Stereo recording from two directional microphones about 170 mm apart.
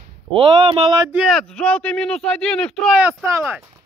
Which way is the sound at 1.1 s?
5° right (ahead or behind).